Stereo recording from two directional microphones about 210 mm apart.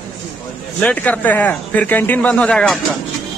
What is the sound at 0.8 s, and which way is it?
A man's voice, 5° left (ahead or behind).